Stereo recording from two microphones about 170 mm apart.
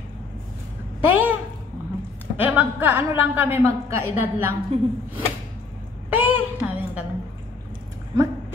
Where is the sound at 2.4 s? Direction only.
10° right (ahead or behind).